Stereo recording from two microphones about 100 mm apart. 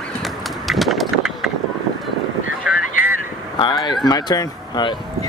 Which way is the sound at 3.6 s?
50° left (ahead or behind).